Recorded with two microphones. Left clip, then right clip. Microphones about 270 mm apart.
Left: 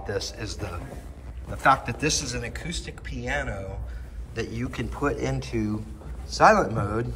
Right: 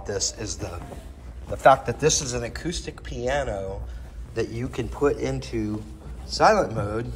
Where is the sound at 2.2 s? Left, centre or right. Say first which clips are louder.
Right 3 dB; centre.